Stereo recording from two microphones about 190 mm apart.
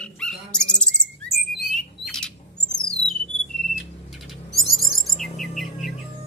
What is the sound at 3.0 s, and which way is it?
Music, 5° left (ahead or behind).